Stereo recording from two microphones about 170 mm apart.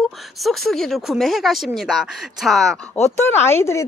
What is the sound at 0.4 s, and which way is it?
Speech, centre (ahead or behind).